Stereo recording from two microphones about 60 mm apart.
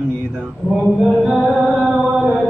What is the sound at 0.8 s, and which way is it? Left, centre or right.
Choir, centre.